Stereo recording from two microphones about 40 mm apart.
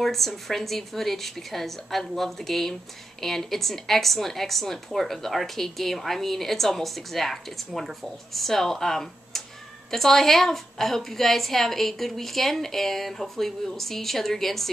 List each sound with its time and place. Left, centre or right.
0.0 s a woman's voice: centre